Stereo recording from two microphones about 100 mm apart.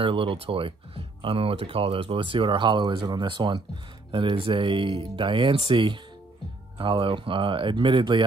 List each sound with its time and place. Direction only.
0.0 s speech: 60° right (ahead or behind)